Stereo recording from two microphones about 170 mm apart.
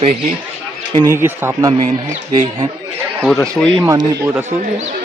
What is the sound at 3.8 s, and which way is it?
Speech, 15° right (ahead or behind).